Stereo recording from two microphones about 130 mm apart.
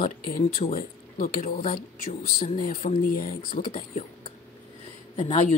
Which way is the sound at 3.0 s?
90° left.